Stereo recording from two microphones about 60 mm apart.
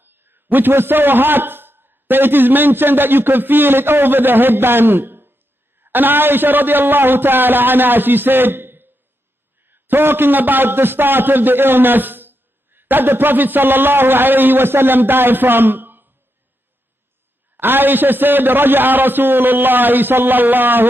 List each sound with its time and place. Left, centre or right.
0.0 s a man's voice: right
17.6 s a man's voice: right